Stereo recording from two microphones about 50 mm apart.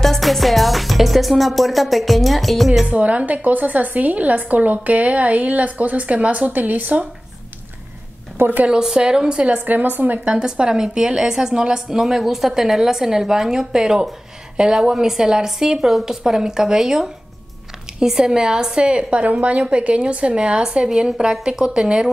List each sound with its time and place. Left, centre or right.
0.0 s music: centre
2.9 s a woman's voice: right
8.6 s a woman's voice: centre
9.7 s a woman's voice: right
10.2 s a woman's voice: centre